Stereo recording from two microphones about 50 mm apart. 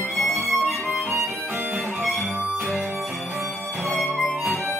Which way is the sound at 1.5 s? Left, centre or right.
Right.